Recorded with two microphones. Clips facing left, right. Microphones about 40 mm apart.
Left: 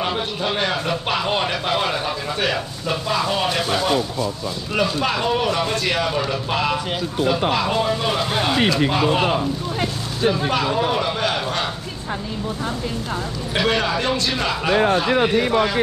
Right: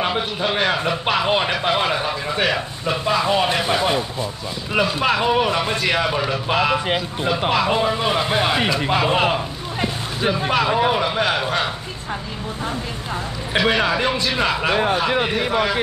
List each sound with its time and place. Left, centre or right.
0.0 s speech: centre
13.6 s speech: centre